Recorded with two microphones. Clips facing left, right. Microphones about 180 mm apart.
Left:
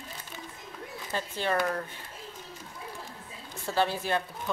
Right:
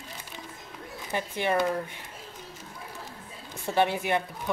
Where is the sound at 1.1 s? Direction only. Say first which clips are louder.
Right 3 dB; 15° right (ahead or behind).